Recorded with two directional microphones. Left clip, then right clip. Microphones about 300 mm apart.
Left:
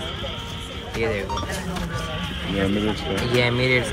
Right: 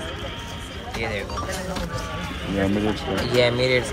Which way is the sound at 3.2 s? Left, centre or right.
Centre.